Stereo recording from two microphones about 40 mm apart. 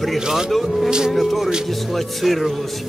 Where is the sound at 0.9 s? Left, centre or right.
Centre.